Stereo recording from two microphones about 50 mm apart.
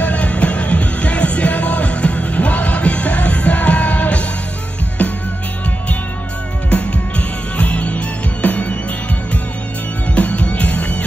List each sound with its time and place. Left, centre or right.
0.0 s music: left
6.7 s music: left
10.1 s music: left